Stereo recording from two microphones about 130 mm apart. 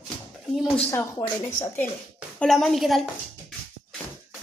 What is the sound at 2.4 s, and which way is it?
Speech, centre (ahead or behind).